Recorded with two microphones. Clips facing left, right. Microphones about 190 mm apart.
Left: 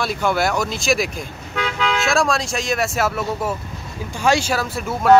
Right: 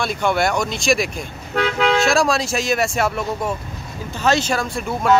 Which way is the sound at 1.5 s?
40° right (ahead or behind).